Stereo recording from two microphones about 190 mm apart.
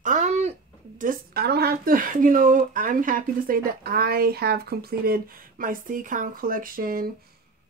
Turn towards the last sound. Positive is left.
turn(degrees=-50)  # may be behind; listen again after turning